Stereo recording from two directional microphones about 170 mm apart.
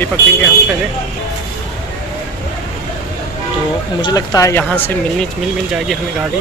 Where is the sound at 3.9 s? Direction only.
25° left (ahead or behind).